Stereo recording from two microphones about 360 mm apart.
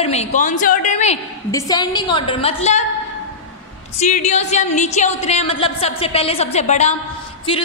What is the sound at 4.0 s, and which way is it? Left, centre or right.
A woman's voice, centre.